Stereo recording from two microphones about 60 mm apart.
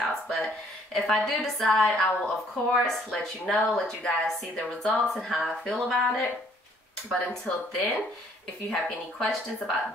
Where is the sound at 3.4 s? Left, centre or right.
Centre.